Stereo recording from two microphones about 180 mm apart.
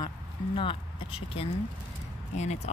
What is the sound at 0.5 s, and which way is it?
Speech, 30° left (ahead or behind).